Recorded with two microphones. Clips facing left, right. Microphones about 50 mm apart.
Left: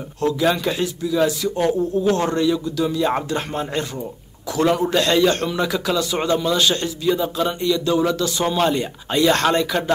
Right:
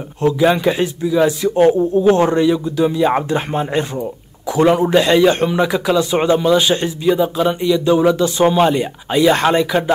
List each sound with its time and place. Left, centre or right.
0.2 s a man's voice: right